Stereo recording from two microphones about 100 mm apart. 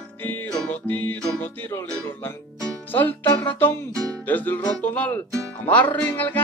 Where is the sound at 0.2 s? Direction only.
20° left (ahead or behind).